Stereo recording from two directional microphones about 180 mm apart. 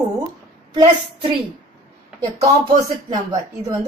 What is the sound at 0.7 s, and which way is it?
Speech, 25° right (ahead or behind).